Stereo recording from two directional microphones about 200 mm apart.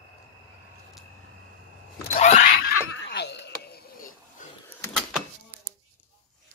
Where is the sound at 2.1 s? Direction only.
35° left (ahead or behind).